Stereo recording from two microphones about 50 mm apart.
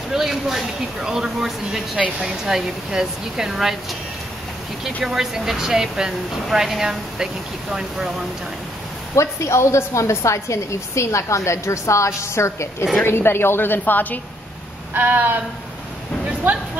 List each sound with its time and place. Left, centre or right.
0.1 s speech: centre
5.0 s speech: centre
9.1 s a woman's voice: left
13.0 s a woman's voice: left
15.0 s a sound: right